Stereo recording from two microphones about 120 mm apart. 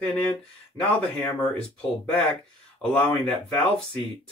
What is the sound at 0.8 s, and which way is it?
Speech, 35° left (ahead or behind).